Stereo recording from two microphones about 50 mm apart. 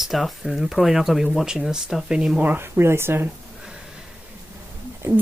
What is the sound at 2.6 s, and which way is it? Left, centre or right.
Speech, right.